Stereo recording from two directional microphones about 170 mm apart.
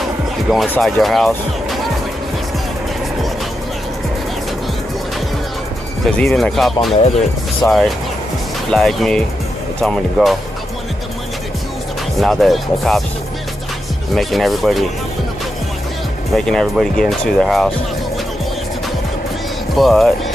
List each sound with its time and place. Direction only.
0.5 s speech: centre (ahead or behind)
6.0 s speech: 5° left (ahead or behind)
7.6 s speech: 20° left (ahead or behind)
8.6 s speech: centre (ahead or behind)
12.2 s speech: centre (ahead or behind)
14.1 s speech: centre (ahead or behind)
16.3 s speech: 5° left (ahead or behind)
19.7 s speech: centre (ahead or behind)